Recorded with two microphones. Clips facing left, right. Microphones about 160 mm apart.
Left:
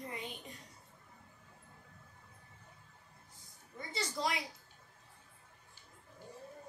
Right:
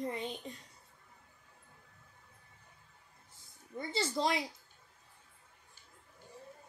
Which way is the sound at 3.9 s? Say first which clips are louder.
Right 4 dB; 30° right (ahead or behind).